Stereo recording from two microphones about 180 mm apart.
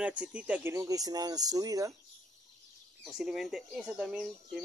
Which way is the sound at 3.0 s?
Centre (ahead or behind).